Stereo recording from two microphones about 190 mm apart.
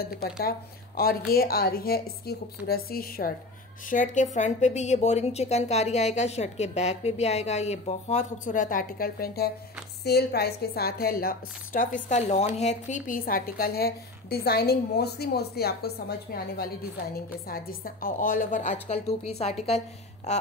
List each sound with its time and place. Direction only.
0.0 s a woman's voice: 50° left (ahead or behind); by 20.4 s 35° left (ahead or behind)